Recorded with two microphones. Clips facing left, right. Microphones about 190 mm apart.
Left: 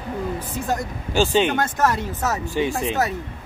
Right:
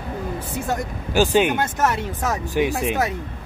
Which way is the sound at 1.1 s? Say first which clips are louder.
Right 1 dB; 10° right (ahead or behind).